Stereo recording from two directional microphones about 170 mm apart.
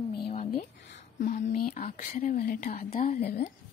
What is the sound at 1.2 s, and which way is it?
Speech, 50° left (ahead or behind).